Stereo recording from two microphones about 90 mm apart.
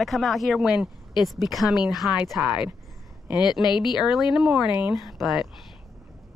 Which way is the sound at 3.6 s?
55° left (ahead or behind).